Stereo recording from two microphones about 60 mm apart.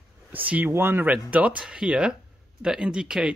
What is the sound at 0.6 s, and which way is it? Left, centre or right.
Speech, right.